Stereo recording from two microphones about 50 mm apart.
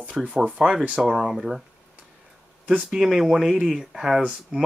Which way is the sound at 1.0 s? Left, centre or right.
Centre.